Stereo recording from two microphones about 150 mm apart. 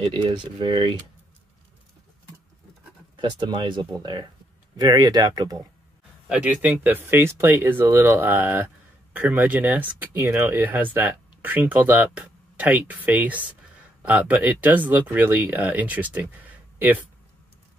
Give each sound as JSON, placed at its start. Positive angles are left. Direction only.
{"t": 0.1, "sound": "speech", "side_deg": -30}
{"t": 3.2, "sound": "speech", "side_deg": -30}
{"t": 6.2, "sound": "speech", "side_deg": -10}